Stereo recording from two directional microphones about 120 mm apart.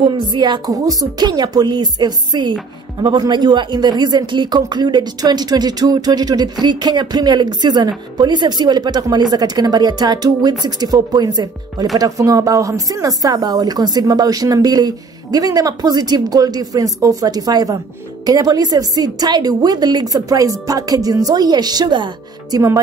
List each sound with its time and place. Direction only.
0.1 s speech: 40° right (ahead or behind)